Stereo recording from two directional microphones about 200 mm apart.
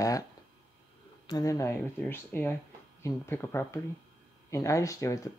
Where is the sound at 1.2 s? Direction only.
20° left (ahead or behind).